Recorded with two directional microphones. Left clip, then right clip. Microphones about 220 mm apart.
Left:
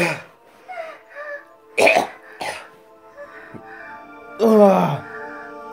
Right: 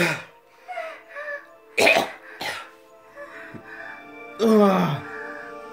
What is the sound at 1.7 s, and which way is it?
Cough, 15° right (ahead or behind).